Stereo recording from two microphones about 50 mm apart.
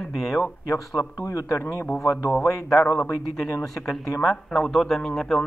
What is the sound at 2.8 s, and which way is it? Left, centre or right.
Speech, left.